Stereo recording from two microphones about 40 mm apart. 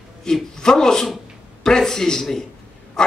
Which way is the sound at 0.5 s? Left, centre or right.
Centre.